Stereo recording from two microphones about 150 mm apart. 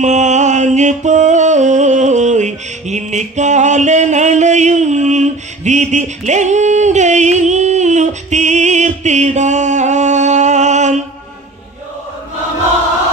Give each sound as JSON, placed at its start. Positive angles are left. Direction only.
{"t": 0.0, "sound": "music", "side_deg": -50}